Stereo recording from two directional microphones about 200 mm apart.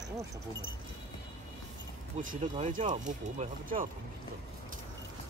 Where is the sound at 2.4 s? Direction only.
35° right (ahead or behind).